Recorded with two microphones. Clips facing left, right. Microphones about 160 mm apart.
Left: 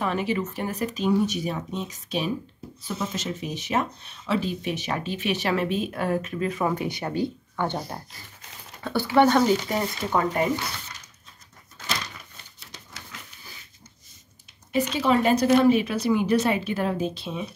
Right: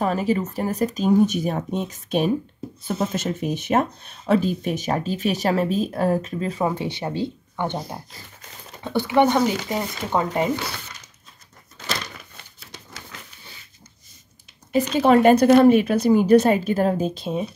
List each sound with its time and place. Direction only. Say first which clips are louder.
0.0 s speech: right 4 dB; 40° right (ahead or behind); by 10.5 s 20° right (ahead or behind)
14.7 s speech: right 5 dB; 50° right (ahead or behind)